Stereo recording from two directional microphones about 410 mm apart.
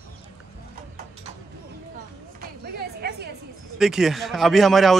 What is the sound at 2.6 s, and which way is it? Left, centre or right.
Music, right.